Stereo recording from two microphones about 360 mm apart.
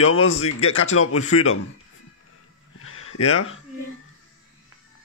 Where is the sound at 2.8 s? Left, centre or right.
Left.